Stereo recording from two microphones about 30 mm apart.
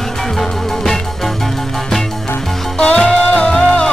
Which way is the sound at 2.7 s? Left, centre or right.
Left.